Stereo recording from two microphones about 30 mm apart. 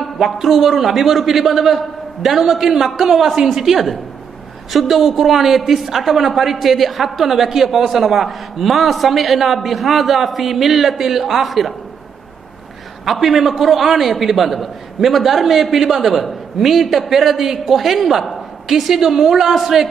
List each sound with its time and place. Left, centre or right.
0.0 s a man's voice: centre
13.0 s a woman's voice: centre